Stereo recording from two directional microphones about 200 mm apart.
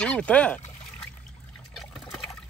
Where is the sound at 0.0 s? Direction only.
5° left (ahead or behind).